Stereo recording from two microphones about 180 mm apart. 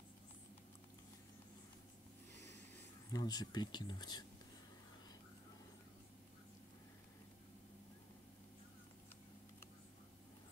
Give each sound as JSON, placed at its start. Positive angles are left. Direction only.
{"t": 3.1, "sound": "speech", "side_deg": 20}